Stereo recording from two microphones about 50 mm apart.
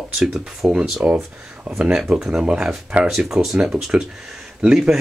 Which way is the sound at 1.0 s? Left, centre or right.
Right.